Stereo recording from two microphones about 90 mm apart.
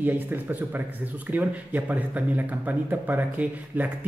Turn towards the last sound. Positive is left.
turn(degrees=-20)  # may be behind; listen again after turning